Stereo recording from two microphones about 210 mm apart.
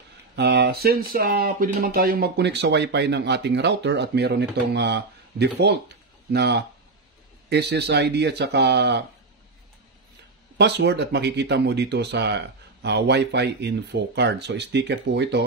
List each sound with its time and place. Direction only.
0.4 s speech: 50° right (ahead or behind)
10.6 s speech: 55° right (ahead or behind)